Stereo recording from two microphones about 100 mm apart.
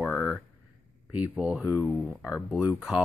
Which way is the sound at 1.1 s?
15° right (ahead or behind).